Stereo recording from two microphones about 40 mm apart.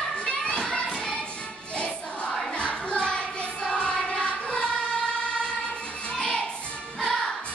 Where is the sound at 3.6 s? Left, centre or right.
Left.